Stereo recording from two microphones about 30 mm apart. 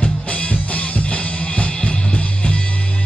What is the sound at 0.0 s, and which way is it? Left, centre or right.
Music, left.